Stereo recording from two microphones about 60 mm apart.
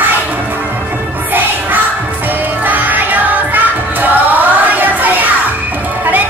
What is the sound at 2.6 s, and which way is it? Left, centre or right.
Music, right.